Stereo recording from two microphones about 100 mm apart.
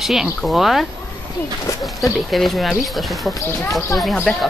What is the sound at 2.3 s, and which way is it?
Speech, centre (ahead or behind).